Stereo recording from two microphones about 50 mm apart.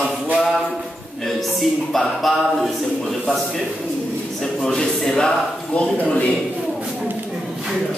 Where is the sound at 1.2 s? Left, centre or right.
Centre.